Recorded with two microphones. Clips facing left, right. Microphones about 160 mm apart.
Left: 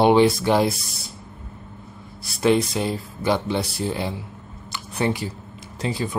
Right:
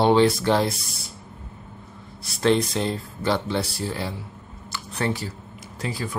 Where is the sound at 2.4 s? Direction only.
5° left (ahead or behind).